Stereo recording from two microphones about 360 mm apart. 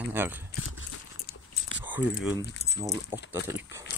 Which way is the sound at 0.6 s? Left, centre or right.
Left.